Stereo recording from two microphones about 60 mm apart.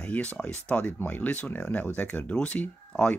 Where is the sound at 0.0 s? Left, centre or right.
Left.